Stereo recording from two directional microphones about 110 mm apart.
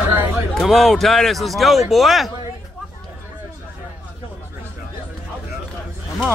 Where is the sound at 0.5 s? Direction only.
Centre (ahead or behind).